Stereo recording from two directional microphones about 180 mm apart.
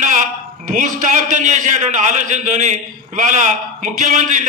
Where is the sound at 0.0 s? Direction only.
45° right (ahead or behind).